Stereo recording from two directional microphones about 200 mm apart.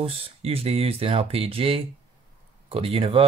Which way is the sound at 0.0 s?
30° right (ahead or behind).